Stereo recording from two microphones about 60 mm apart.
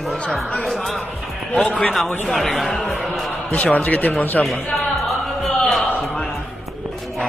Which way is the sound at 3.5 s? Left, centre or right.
Left.